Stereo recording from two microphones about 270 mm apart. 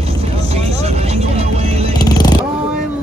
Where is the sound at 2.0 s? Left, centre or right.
Centre.